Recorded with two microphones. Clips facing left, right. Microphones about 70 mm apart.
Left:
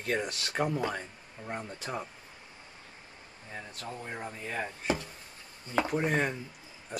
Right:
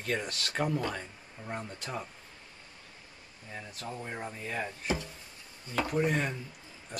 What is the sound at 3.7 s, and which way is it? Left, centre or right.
Speech, centre.